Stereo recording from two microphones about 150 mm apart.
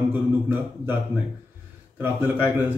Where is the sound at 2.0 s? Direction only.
15° right (ahead or behind).